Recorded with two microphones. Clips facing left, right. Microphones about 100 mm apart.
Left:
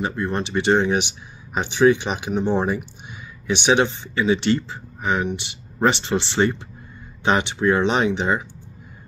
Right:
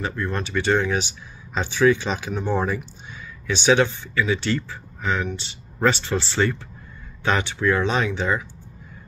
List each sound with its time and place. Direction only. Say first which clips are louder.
0.0 s speech: left 3 dB; 20° left (ahead or behind)